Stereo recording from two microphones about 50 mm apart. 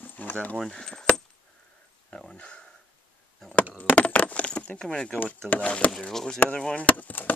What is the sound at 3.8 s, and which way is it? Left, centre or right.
Coin, left.